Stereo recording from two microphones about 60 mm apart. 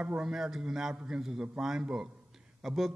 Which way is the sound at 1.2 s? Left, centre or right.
Centre.